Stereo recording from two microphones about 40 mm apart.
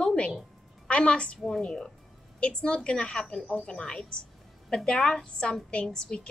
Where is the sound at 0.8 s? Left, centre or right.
Left.